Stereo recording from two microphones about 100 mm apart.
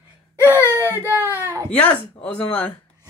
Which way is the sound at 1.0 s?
25° right (ahead or behind).